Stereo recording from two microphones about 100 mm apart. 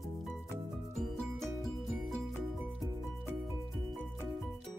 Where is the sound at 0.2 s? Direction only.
Centre (ahead or behind).